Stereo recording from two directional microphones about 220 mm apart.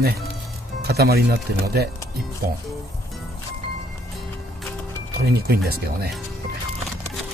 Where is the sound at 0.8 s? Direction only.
45° right (ahead or behind).